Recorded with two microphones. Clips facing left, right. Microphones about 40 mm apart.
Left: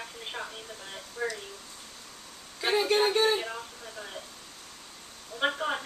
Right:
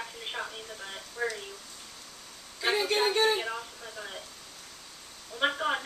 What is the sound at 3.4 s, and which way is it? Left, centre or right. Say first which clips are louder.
Speech: right 1 dB; centre.